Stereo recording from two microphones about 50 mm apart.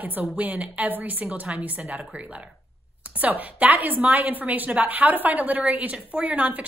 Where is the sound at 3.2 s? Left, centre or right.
Right.